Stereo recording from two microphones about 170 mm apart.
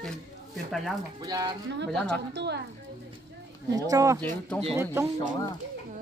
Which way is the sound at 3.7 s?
20° right (ahead or behind).